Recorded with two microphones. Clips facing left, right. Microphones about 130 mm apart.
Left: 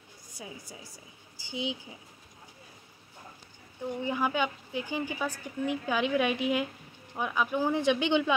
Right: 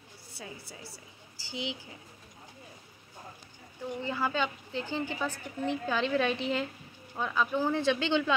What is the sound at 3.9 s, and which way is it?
A woman's voice, 15° left (ahead or behind).